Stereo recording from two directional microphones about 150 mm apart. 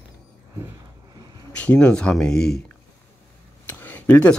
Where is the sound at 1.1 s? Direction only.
25° right (ahead or behind).